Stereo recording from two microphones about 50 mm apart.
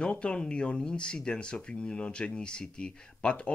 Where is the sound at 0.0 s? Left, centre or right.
Left.